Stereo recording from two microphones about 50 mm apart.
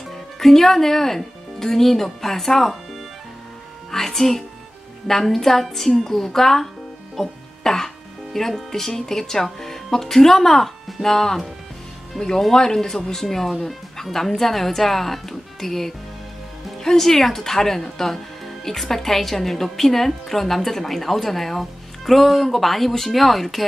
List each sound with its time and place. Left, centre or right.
0.4 s speech: centre
3.9 s speech: centre